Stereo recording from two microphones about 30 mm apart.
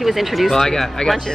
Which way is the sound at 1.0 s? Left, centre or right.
Left.